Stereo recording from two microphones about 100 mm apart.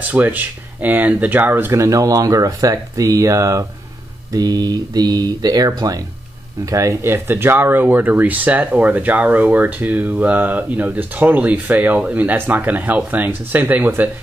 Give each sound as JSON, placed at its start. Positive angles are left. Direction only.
{"t": 0.0, "sound": "speech", "side_deg": -15}